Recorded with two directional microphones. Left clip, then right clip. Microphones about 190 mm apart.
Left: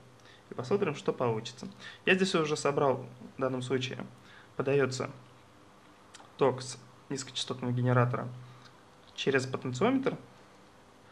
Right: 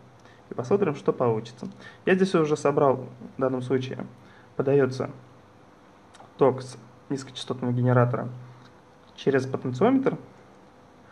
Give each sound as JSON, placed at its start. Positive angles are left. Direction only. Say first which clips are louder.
{"t": 0.6, "sound": "speech", "louder": "right 6 dB", "side_deg": -25}
{"t": 6.1, "sound": "speech", "louder": "right 6 dB", "side_deg": -20}